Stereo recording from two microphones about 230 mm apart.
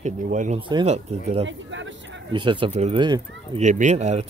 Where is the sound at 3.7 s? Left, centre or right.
Right.